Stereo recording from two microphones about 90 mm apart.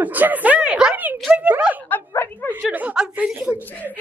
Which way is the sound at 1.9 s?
20° left (ahead or behind).